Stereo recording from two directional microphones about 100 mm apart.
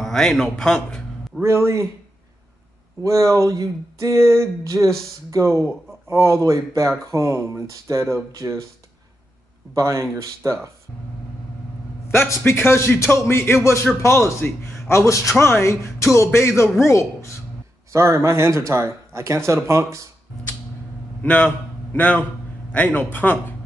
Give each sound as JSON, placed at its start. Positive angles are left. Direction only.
{"t": 0.0, "sound": "a man's voice", "side_deg": 5}
{"t": 1.4, "sound": "speech", "side_deg": -25}
{"t": 3.0, "sound": "speech", "side_deg": -30}
{"t": 9.8, "sound": "speech", "side_deg": -30}
{"t": 12.1, "sound": "a man's voice", "side_deg": 25}
{"t": 17.9, "sound": "speech", "side_deg": -30}
{"t": 21.2, "sound": "a man's voice", "side_deg": 15}